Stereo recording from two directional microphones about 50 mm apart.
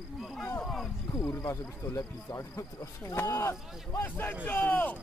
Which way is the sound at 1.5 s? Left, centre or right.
Left.